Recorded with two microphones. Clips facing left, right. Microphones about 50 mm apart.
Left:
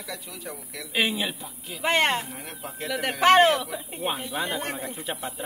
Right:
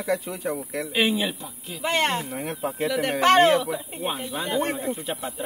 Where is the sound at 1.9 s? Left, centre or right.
Centre.